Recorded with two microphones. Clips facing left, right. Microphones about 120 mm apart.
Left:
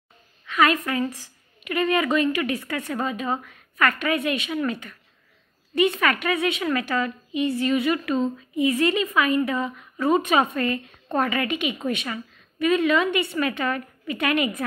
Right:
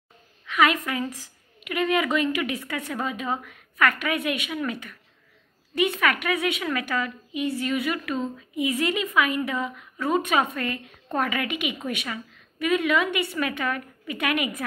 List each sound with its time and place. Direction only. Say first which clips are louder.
0.6 s a woman's voice: left 2 dB; 10° right (ahead or behind)
9.9 s a woman's voice: left 3 dB; centre (ahead or behind)